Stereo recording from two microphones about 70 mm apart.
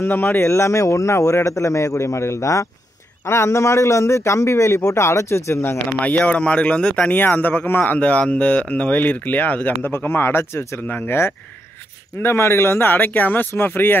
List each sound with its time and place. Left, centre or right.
0.0 s a man's voice: left
5.9 s speech: left